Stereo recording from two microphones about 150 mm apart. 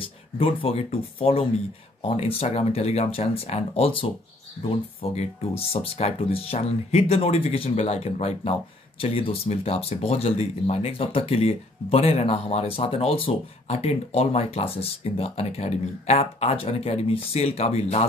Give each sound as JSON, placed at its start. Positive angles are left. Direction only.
{"t": 0.4, "sound": "speech", "side_deg": 40}